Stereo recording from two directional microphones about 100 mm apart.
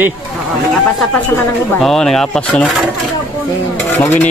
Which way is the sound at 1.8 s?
5° left (ahead or behind).